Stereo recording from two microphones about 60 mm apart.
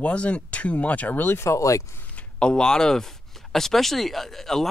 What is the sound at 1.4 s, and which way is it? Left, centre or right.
Speech, left.